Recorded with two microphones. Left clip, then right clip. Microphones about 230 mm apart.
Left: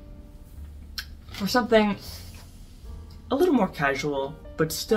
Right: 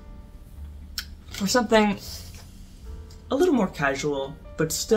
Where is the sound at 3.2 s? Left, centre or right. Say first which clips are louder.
Even; centre.